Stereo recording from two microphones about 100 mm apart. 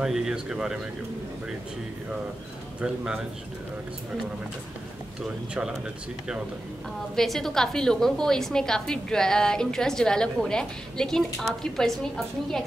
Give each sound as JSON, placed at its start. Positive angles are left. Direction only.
{"t": 0.0, "sound": "a woman's voice", "side_deg": -5}
{"t": 2.8, "sound": "speech", "side_deg": -10}
{"t": 5.2, "sound": "speech", "side_deg": -5}
{"t": 7.2, "sound": "a woman's voice", "side_deg": 5}